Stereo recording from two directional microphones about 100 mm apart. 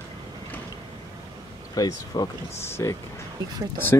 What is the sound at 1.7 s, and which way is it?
Speech, 40° left (ahead or behind).